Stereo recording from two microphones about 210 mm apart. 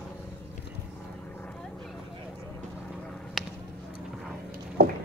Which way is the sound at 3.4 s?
Centre (ahead or behind).